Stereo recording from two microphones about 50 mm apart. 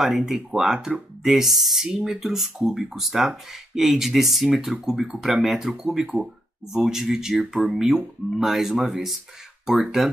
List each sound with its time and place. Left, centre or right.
0.0 s speech: centre